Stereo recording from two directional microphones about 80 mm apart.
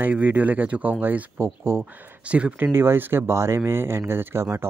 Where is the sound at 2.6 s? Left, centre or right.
Right.